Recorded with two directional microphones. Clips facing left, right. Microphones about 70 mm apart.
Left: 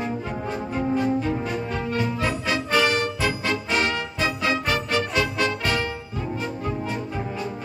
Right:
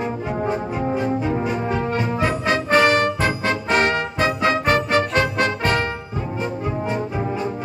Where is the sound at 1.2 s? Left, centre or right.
Centre.